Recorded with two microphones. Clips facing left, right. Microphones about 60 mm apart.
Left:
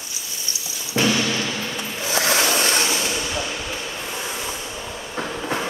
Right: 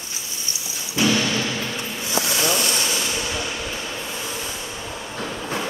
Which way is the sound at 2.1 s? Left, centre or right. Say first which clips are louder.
Left 3 dB; left.